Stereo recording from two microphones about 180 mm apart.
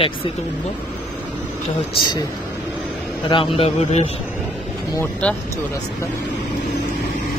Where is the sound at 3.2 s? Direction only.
30° left (ahead or behind).